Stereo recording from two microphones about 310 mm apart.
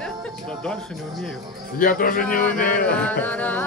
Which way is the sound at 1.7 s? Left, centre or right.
Left.